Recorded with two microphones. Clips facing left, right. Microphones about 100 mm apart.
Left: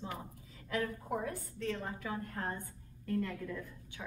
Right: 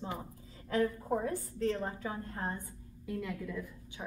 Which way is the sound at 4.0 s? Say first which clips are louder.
Right 3 dB; 20° right (ahead or behind).